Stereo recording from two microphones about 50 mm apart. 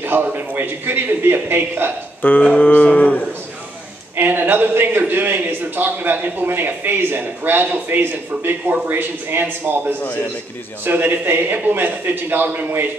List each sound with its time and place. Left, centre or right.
0.0 s a man's voice: right
2.2 s cattle: left
4.2 s a man's voice: right